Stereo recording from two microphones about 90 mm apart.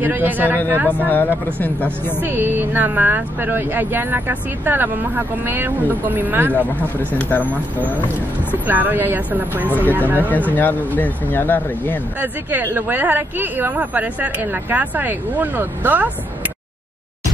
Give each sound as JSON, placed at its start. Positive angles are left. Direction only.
{"t": 0.0, "sound": "speech", "side_deg": -20}
{"t": 1.0, "sound": "speech", "side_deg": 20}
{"t": 2.1, "sound": "speech", "side_deg": -25}
{"t": 7.2, "sound": "speech", "side_deg": 20}
{"t": 8.6, "sound": "speech", "side_deg": -20}
{"t": 9.7, "sound": "speech", "side_deg": 20}
{"t": 9.9, "sound": "speech", "side_deg": -20}
{"t": 10.5, "sound": "speech", "side_deg": 20}
{"t": 12.2, "sound": "speech", "side_deg": -20}